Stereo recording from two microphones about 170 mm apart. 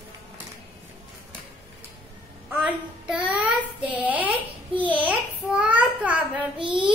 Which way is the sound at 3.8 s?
10° right (ahead or behind).